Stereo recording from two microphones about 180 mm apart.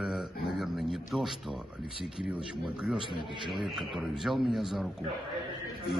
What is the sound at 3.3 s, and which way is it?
Speech, 25° right (ahead or behind).